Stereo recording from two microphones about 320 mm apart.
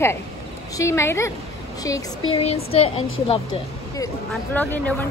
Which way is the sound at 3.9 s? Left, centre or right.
Centre.